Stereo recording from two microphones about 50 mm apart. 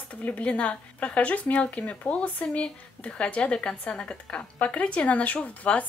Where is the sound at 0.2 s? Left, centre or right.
Left.